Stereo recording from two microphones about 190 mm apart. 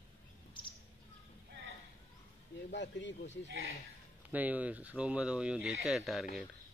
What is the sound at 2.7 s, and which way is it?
Speech, 65° left (ahead or behind).